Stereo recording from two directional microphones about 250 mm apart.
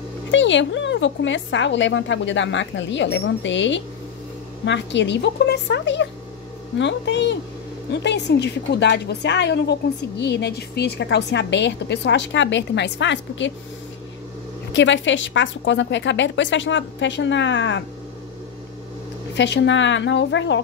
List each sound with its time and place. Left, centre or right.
0.3 s a woman's voice: left
14.7 s a woman's voice: left
19.3 s a woman's voice: left